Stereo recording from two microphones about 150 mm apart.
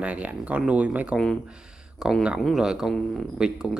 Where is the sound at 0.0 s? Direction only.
10° right (ahead or behind).